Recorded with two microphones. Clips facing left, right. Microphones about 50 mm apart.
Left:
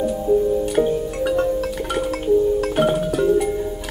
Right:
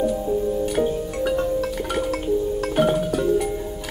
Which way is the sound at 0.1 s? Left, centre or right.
Centre.